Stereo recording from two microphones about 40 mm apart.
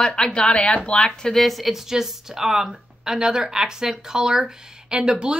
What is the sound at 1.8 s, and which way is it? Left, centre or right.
A woman's voice, centre.